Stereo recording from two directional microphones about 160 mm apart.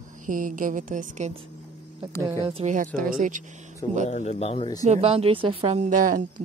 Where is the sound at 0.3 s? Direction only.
55° right (ahead or behind).